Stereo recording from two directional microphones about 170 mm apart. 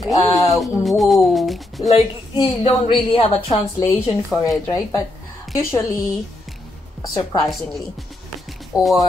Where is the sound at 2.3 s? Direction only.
30° left (ahead or behind).